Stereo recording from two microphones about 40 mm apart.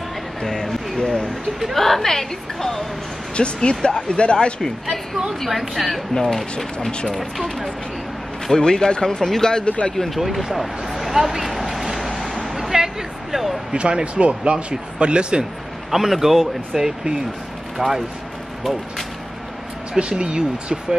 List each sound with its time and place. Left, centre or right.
0.4 s speech: centre
1.2 s speech: centre
3.5 s speech: left
5.4 s speech: centre
7.4 s speech: centre
9.9 s a sound: centre
13.7 s speech: right
15.9 s speech: centre
19.9 s speech: right